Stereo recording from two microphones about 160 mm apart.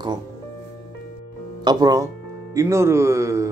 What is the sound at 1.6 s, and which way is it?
Speech, 25° right (ahead or behind).